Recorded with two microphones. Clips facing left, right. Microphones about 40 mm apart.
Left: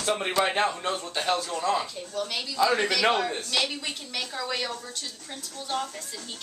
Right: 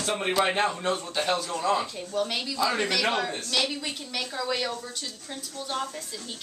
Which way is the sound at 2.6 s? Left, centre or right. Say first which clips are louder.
Left 3 dB; centre.